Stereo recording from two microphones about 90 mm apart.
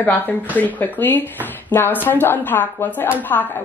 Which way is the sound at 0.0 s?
20° left (ahead or behind).